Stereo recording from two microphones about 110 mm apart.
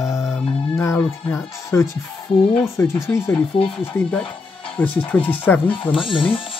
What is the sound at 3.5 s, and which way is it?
Speech, 50° left (ahead or behind).